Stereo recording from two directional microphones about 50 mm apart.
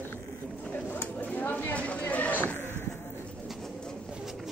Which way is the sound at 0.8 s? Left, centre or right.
Left.